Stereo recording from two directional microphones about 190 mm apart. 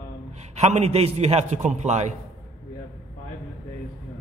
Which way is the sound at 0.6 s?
35° right (ahead or behind).